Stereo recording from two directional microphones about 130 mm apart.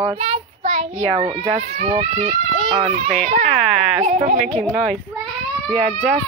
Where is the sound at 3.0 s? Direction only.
75° right (ahead or behind); by 4.6 s 55° right (ahead or behind).